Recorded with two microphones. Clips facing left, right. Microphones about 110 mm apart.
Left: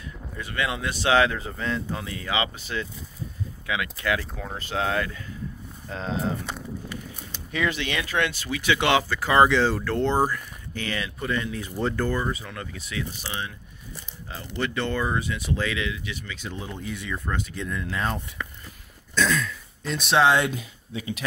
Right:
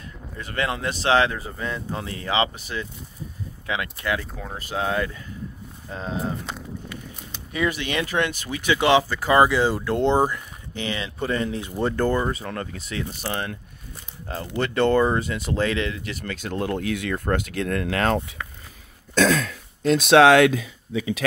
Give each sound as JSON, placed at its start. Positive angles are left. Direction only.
{"t": 0.4, "sound": "speech", "side_deg": -40}
{"t": 3.6, "sound": "speech", "side_deg": -30}
{"t": 4.2, "sound": "speech", "side_deg": 0}
{"t": 4.7, "sound": "speech", "side_deg": -25}
{"t": 7.5, "sound": "speech", "side_deg": -20}
{"t": 9.4, "sound": "speech", "side_deg": -10}
{"t": 11.6, "sound": "speech", "side_deg": -20}
{"t": 11.9, "sound": "speech", "side_deg": -35}
{"t": 13.2, "sound": "speech", "side_deg": -50}